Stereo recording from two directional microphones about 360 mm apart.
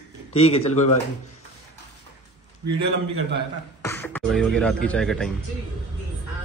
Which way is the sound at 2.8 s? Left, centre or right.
Right.